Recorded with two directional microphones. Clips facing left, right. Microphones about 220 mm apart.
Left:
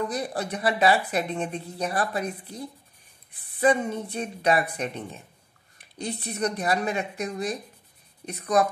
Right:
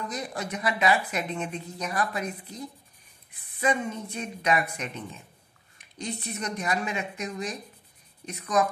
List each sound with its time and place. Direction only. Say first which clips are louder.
0.1 s speech: left 4 dB; 35° left (ahead or behind)